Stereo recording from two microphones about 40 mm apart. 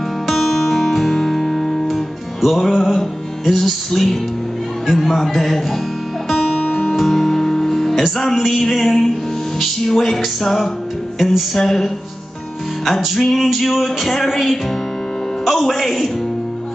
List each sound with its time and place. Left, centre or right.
0.3 s guitar: centre
2.0 s music: centre
7.0 s music: centre